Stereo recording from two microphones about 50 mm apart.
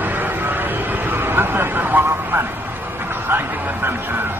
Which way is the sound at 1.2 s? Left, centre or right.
Right.